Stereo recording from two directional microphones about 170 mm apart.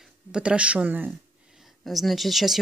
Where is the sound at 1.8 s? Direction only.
Centre (ahead or behind).